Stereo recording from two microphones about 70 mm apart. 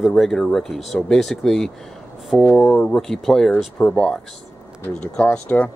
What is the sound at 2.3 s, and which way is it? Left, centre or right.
Speech, centre.